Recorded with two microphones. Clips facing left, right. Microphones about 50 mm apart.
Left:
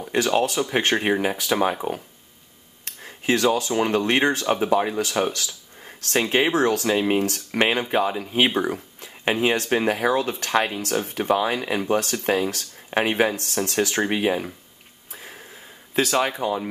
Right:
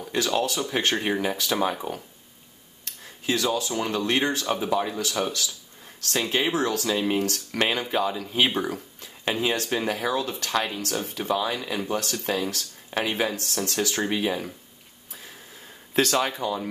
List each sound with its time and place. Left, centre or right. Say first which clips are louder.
0.0 s speech: left 4 dB; left
2.8 s a sound: left 4 dB; left
3.7 s speech: left 5 dB; left
15.9 s speech: left 1 dB; centre
16.2 s speech: left 3 dB; left